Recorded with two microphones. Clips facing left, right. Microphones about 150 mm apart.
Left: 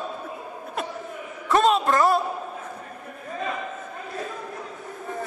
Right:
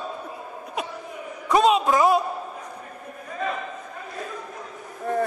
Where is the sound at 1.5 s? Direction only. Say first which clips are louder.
Right 1 dB; 5° right (ahead or behind).